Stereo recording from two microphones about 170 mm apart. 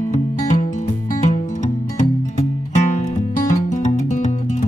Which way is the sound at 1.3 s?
45° left (ahead or behind).